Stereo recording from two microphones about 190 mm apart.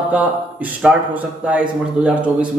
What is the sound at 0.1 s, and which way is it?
A man's voice, 10° right (ahead or behind).